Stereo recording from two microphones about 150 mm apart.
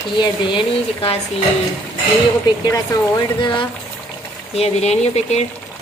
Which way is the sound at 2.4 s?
25° left (ahead or behind).